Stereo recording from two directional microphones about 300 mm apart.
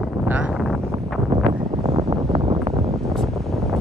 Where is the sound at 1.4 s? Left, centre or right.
Centre.